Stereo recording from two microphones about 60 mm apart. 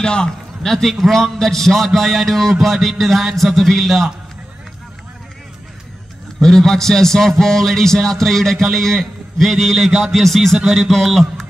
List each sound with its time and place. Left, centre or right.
0.0 s a man's voice: centre
6.4 s a man's voice: centre